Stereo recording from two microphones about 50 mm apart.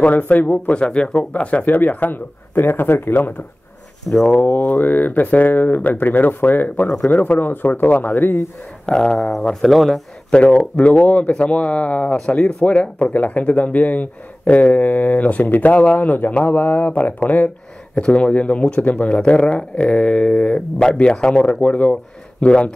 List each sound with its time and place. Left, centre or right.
0.0 s speech: left
0.7 s speech: left
4.1 s speech: centre
4.4 s speech: left
8.8 s speech: centre
10.3 s speech: centre; by 17.5 s left
17.9 s speech: centre